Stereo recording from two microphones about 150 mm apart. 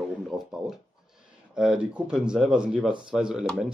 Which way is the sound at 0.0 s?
Centre (ahead or behind).